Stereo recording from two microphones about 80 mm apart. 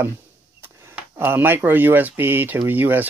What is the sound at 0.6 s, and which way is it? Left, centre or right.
Speech, right.